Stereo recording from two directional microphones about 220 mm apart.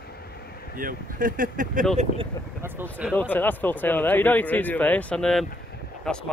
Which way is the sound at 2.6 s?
10° right (ahead or behind).